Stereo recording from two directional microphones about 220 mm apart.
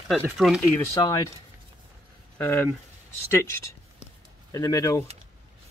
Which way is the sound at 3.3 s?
10° left (ahead or behind).